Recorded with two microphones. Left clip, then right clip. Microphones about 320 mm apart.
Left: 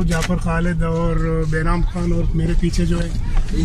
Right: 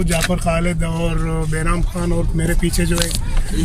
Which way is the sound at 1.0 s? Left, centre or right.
Centre.